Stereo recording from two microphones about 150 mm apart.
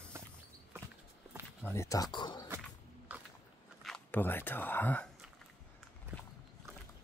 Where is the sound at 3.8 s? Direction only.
5° left (ahead or behind).